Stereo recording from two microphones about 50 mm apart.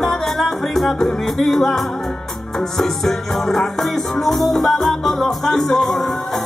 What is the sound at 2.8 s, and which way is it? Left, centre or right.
Music, centre.